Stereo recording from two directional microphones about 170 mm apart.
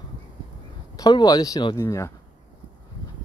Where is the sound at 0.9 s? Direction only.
25° left (ahead or behind).